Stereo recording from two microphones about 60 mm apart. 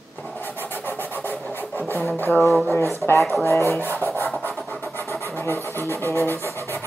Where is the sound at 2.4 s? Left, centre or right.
Centre.